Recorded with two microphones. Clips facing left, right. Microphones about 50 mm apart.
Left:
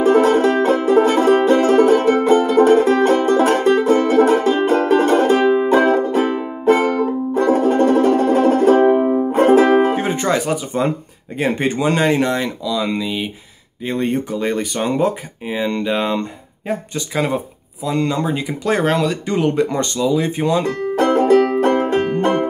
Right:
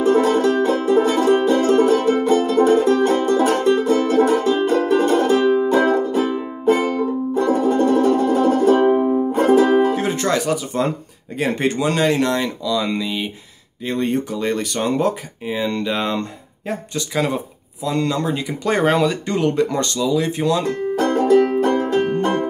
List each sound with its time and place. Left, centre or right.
0.2 s music: left
4.1 s music: left
4.6 s music: left
5.9 s music: left
9.9 s music: centre
11.3 s speech: centre
19.2 s speech: centre
20.9 s music: left